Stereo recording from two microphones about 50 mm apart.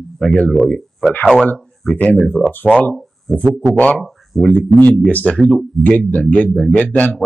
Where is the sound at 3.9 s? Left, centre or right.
Centre.